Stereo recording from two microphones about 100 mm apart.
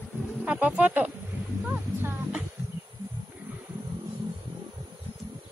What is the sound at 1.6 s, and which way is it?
Music, 20° right (ahead or behind).